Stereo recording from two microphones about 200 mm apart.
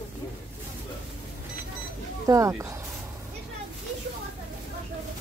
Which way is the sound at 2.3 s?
15° right (ahead or behind).